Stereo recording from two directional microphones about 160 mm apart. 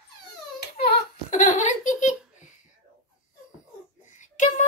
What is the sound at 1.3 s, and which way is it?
Giggle, 50° left (ahead or behind).